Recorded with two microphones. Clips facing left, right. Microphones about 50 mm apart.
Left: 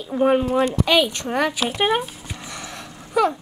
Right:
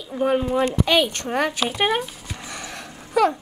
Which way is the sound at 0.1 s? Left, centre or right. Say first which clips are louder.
Left 3 dB; centre.